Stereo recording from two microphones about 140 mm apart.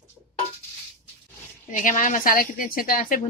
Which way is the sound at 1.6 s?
65° left (ahead or behind).